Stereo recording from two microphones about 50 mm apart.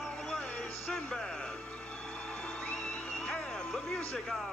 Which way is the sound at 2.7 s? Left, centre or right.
Centre.